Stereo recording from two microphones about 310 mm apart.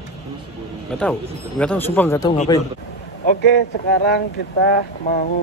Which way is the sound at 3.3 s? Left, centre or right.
Left.